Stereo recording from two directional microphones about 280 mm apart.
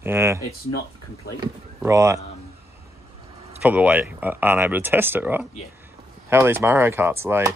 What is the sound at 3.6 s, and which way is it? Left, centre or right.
Speech, centre.